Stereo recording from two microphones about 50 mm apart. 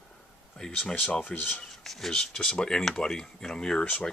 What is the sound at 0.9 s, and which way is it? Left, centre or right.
Speech, left.